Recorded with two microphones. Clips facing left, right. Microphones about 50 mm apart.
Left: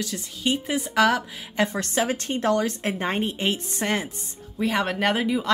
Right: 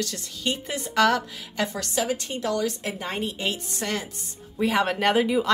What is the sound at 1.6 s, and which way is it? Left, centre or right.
A woman's voice, left.